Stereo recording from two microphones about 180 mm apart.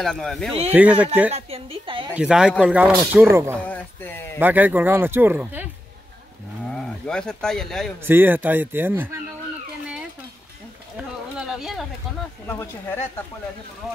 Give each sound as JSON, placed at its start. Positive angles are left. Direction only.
{"t": 0.0, "sound": "speech", "side_deg": 0}
{"t": 1.3, "sound": "a sound", "side_deg": -30}
{"t": 2.1, "sound": "speech", "side_deg": -5}
{"t": 3.6, "sound": "speech", "side_deg": 10}
{"t": 4.4, "sound": "speech", "side_deg": -10}
{"t": 6.7, "sound": "speech", "side_deg": 5}
{"t": 8.0, "sound": "speech", "side_deg": -10}
{"t": 11.0, "sound": "a sound", "side_deg": -5}
{"t": 12.4, "sound": "speech", "side_deg": 15}